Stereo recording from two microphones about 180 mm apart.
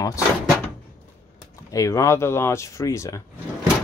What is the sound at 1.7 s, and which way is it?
Speech, 15° left (ahead or behind).